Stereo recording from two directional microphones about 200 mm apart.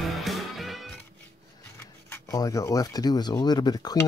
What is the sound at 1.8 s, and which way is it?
Speech, 10° left (ahead or behind).